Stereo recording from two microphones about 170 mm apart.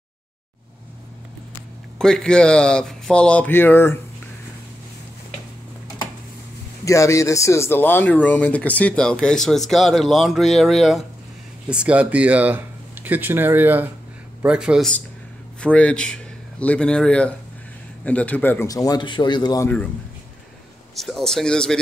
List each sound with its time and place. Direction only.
2.0 s speech: 5° left (ahead or behind)
6.8 s speech: 20° left (ahead or behind)
20.9 s speech: centre (ahead or behind)